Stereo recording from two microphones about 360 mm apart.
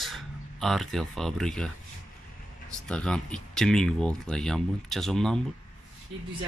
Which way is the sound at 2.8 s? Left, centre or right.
Centre.